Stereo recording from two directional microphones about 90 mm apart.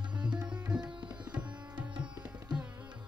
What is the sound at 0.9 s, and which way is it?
Tabla, 60° right (ahead or behind).